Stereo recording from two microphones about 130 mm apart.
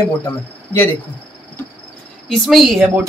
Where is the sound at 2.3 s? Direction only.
Centre (ahead or behind).